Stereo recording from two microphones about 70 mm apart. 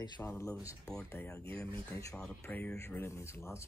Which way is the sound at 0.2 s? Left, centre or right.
Left.